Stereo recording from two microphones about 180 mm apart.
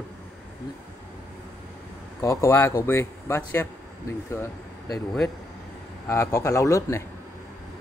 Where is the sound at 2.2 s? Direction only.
15° left (ahead or behind).